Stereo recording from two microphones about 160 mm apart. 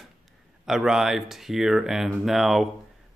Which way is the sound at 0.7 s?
Centre (ahead or behind).